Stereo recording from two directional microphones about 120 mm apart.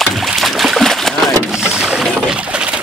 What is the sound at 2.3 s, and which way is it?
Pigeon, 10° right (ahead or behind).